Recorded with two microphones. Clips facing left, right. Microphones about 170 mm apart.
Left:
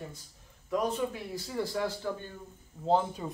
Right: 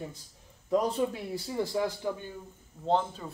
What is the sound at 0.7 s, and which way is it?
Speech, 35° right (ahead or behind).